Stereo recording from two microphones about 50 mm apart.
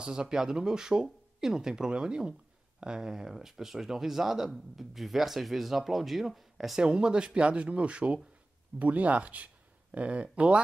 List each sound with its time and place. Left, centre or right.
0.0 s speech: centre
6.8 s speech: centre